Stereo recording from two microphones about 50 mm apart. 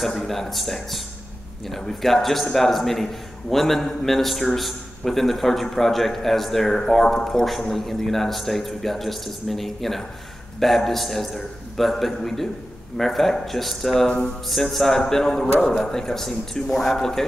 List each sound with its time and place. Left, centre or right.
0.0 s a man's voice: centre
14.0 s speech: left
14.5 s a man's voice: centre